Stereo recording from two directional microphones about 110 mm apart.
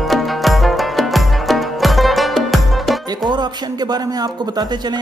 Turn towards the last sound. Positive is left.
turn(degrees=-40)  # may be behind; listen again after turning